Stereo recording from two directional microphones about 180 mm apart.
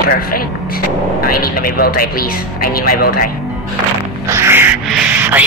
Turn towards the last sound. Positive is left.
turn(degrees=-10)  # may be behind; listen again after turning